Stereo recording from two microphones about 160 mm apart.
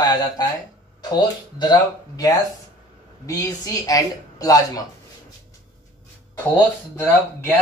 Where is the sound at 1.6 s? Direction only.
25° left (ahead or behind).